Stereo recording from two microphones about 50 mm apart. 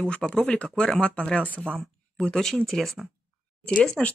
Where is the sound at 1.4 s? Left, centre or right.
Right.